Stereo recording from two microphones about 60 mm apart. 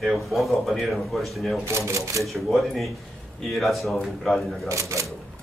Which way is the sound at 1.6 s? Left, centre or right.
Right.